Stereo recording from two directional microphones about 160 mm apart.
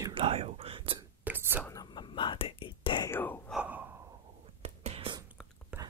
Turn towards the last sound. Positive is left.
turn(degrees=-10)  # may be behind; listen again after turning